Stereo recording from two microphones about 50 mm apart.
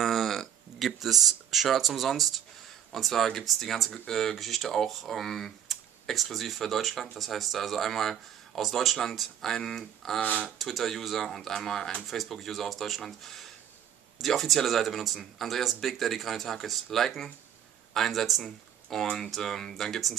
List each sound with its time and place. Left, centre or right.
0.0 s speech: centre